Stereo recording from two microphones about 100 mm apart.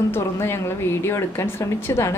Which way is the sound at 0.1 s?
25° left (ahead or behind).